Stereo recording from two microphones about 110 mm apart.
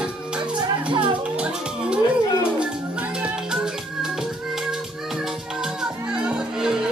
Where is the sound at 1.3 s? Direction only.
10° right (ahead or behind).